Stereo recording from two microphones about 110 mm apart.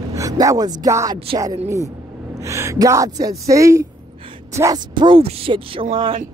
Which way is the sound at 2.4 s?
25° right (ahead or behind).